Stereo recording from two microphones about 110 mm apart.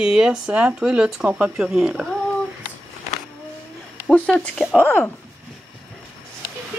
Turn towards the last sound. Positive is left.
turn(degrees=20)  # may be behind; listen again after turning